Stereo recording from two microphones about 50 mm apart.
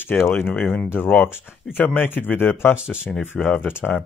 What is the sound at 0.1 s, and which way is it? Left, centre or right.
Speech, left.